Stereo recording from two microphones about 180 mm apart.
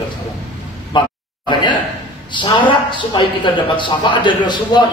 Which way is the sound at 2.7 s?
25° left (ahead or behind).